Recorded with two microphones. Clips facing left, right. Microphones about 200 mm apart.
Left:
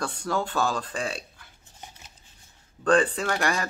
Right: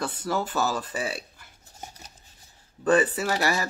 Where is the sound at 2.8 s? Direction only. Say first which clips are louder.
Even; 5° right (ahead or behind).